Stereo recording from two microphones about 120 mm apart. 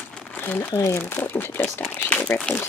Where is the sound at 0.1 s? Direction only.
10° left (ahead or behind).